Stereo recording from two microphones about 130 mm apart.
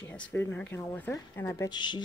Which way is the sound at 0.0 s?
10° left (ahead or behind).